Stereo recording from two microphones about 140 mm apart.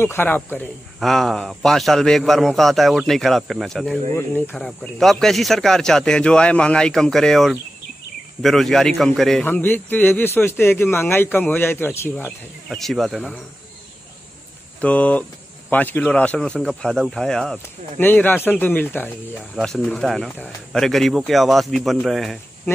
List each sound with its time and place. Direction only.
0.0 s speech: 15° left (ahead or behind)
0.9 s speech: centre (ahead or behind)
4.1 s speech: 15° left (ahead or behind)
9.5 s speech: 15° left (ahead or behind)
12.6 s speech: centre (ahead or behind)
14.8 s speech: 10° left (ahead or behind)
19.5 s speech: centre (ahead or behind)